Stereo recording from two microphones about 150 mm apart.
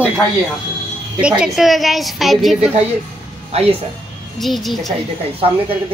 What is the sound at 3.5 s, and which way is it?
Speech, 40° right (ahead or behind).